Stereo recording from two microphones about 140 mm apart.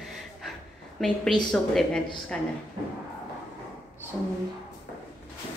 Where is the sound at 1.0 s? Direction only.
5° left (ahead or behind).